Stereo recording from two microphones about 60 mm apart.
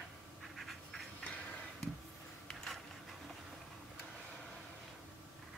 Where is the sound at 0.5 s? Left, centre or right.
Centre.